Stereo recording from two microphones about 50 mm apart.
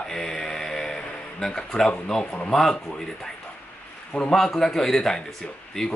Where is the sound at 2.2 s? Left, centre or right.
Left.